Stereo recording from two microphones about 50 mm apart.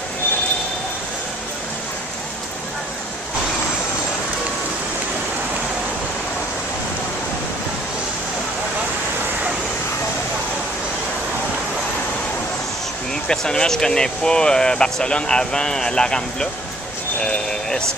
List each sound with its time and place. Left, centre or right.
13.3 s speech: centre
17.2 s sheep: centre